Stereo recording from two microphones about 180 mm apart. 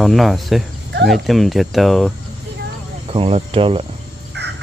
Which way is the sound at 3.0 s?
30° right (ahead or behind).